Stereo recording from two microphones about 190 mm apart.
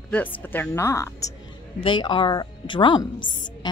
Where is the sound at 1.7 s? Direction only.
25° left (ahead or behind).